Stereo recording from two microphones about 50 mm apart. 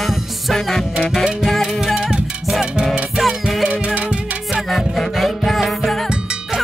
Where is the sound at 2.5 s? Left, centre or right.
Centre.